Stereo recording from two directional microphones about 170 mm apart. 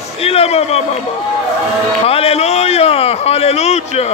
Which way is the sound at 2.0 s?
35° left (ahead or behind).